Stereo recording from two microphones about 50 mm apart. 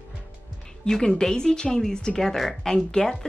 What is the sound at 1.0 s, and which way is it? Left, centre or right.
Speech, centre.